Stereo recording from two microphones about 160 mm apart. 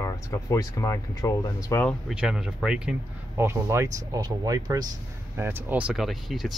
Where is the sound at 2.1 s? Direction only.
5° right (ahead or behind).